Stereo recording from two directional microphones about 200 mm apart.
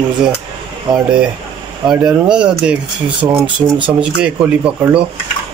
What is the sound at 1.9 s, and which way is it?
Speech, 5° right (ahead or behind).